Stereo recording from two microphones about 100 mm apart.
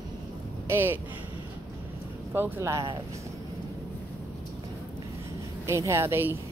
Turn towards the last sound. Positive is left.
turn(degrees=-25)  # may be behind; listen again after turning